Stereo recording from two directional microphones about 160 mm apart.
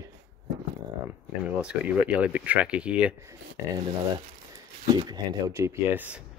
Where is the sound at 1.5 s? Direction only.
5° right (ahead or behind).